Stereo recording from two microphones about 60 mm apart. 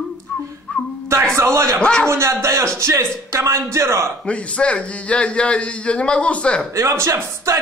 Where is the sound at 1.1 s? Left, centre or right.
Right.